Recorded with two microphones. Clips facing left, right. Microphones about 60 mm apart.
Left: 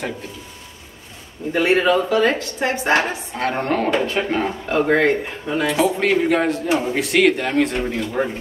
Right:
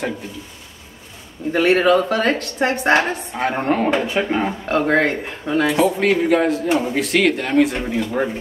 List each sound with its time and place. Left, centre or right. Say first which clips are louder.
1.5 s speech: right 2 dB; right
2.9 s a woman's voice: right 2 dB; centre
3.3 s speech: right 1 dB; centre
4.9 s speech: left 1 dB; right
5.7 s speech: even; centre